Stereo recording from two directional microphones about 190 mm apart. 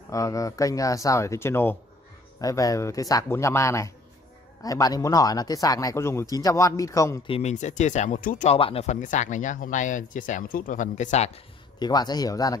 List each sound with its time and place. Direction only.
0.1 s speech: 15° left (ahead or behind)
7.2 s speech: 35° left (ahead or behind)
11.8 s speech: 20° left (ahead or behind)